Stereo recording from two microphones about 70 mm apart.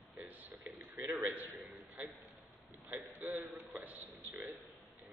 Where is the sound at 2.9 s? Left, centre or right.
Right.